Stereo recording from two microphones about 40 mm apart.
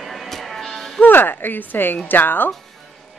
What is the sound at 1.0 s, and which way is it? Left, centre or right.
Speech, left.